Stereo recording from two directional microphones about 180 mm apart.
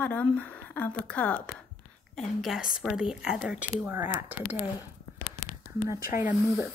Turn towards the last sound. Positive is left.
turn(degrees=45)  # may be behind; listen again after turning